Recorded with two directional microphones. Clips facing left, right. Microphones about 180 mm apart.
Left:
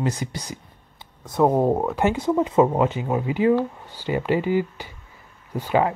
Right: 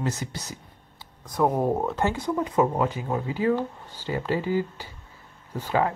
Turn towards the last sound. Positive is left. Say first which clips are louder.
# left 4 dB
turn(degrees=15)  # may be behind; listen again after turning